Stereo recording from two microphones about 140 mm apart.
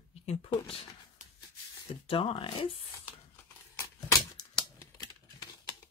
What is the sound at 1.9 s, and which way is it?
Speech, 40° left (ahead or behind).